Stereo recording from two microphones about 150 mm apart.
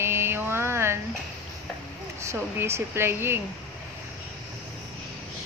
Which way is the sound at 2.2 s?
20° right (ahead or behind).